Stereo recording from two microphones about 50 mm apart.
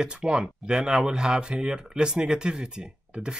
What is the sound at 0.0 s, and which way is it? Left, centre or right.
Speech, centre.